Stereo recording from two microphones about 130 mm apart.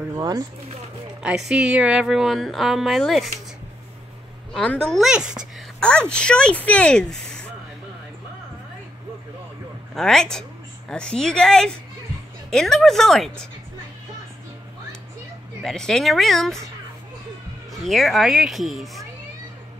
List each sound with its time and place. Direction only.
0.1 s speech: 30° right (ahead or behind)
1.2 s a woman's voice: 5° right (ahead or behind)
4.6 s a woman's voice: 5° left (ahead or behind)
5.8 s speech: 5° left (ahead or behind)
9.9 s a woman's voice: 5° left (ahead or behind)
15.6 s a woman's voice: 5° left (ahead or behind)
17.7 s a woman's voice: centre (ahead or behind)